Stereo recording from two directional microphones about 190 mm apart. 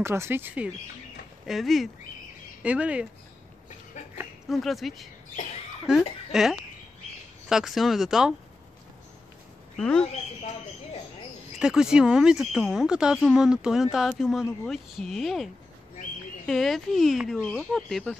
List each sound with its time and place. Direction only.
0.0 s speech: 15° right (ahead or behind)
4.5 s speech: centre (ahead or behind)
9.8 s speech: 5° left (ahead or behind)
10.1 s speech: 35° left (ahead or behind)
11.6 s speech: 5° right (ahead or behind)